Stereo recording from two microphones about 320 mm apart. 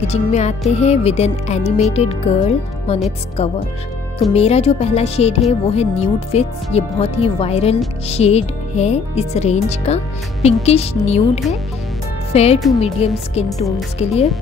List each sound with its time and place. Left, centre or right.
0.1 s music: left
4.2 s music: centre
12.3 s speech: centre
12.8 s music: centre